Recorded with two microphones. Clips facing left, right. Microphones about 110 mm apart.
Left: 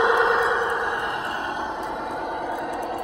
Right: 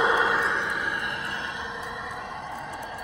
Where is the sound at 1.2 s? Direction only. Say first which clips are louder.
Left 6 dB; 45° left (ahead or behind); by 3.0 s 60° left (ahead or behind).